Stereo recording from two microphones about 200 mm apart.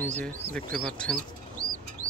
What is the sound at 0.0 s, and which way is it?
Speech, 10° left (ahead or behind).